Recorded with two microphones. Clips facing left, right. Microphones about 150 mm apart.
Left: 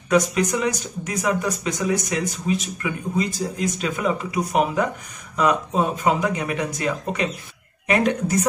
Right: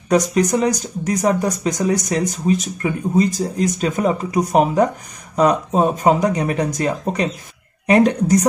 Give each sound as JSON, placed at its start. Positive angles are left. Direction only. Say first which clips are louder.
{"t": 0.1, "sound": "speech", "louder": "right 4 dB", "side_deg": -40}